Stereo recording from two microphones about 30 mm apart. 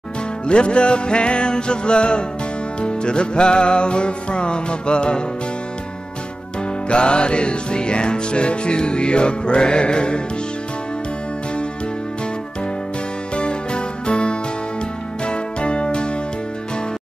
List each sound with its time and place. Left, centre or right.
0.5 s music: left
6.9 s music: left
13.4 s music: left